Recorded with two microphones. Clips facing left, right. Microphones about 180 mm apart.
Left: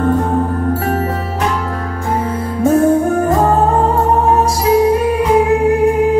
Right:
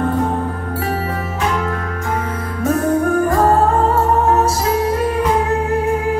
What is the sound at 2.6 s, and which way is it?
Music, 25° left (ahead or behind).